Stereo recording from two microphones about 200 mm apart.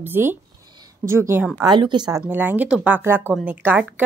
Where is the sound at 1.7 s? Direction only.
20° right (ahead or behind).